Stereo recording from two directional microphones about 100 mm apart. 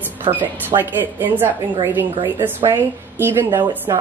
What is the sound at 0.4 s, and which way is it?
A woman's voice, 20° right (ahead or behind).